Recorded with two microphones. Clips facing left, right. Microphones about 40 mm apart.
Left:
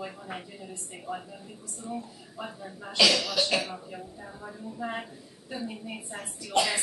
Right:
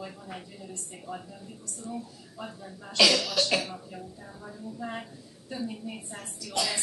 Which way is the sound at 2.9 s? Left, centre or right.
Centre.